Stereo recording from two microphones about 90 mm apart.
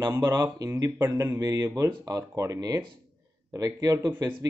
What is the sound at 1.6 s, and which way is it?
A man's voice, 35° right (ahead or behind).